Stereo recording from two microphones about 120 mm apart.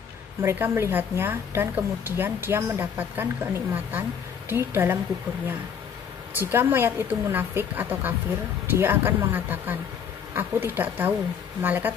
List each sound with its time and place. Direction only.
0.4 s a woman's voice: 20° right (ahead or behind)
6.3 s a woman's voice: 15° right (ahead or behind)